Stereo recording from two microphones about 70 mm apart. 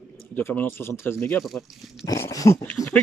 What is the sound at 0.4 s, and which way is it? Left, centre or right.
Speech, left.